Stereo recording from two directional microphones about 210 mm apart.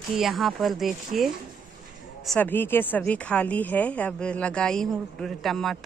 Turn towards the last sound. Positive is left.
turn(degrees=0)  # may be behind; listen again after turning